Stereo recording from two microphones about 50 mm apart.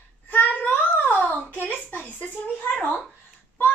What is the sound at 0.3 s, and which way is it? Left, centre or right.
Child singing, left.